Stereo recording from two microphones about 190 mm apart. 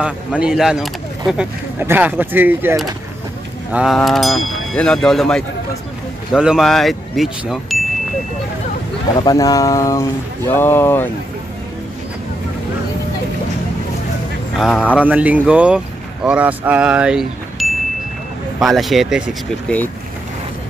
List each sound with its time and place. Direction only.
0.0 s speech: 5° right (ahead or behind)
3.7 s speech: centre (ahead or behind)
9.2 s speech: 20° left (ahead or behind)
14.6 s speech: centre (ahead or behind)